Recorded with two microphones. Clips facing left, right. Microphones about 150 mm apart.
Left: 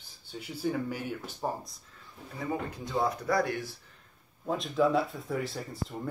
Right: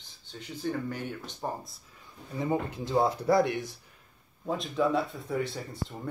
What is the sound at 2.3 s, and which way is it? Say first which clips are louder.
Speech: right 4 dB; 25° right (ahead or behind).